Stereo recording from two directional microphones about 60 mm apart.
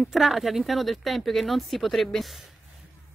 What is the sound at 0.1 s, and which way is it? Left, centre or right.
A woman's voice, centre.